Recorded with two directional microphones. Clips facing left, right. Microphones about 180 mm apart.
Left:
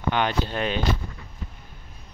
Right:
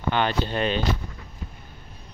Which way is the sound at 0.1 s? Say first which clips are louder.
Right 1 dB; 10° left (ahead or behind).